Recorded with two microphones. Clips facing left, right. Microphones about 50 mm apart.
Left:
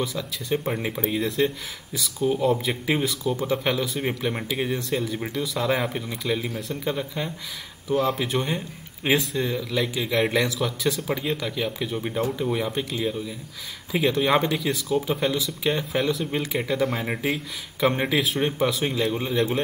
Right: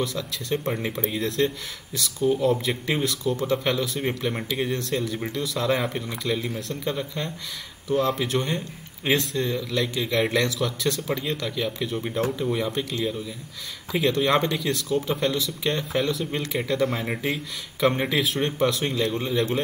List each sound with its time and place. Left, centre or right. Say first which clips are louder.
0.0 s speech: even; centre